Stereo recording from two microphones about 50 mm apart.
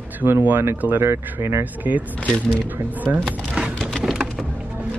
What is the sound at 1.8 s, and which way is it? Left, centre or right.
Speech, right.